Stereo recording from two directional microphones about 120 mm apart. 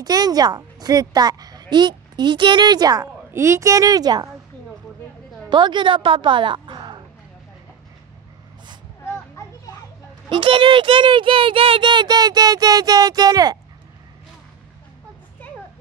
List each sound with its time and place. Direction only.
0.0 s speech: 35° right (ahead or behind)
3.3 s a woman's voice: 25° right (ahead or behind)
5.5 s a woman's voice: 40° right (ahead or behind)
9.4 s children playing: 25° left (ahead or behind)
10.3 s speech: 45° right (ahead or behind)